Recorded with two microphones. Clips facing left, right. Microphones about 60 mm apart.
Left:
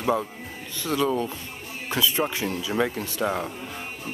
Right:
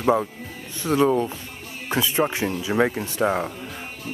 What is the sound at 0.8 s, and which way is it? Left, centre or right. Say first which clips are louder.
Speech: right 5 dB; right.